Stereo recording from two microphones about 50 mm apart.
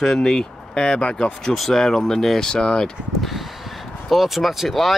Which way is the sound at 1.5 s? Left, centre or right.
Centre.